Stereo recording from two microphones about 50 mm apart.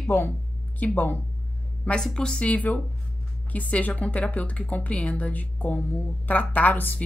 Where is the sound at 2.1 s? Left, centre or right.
Centre.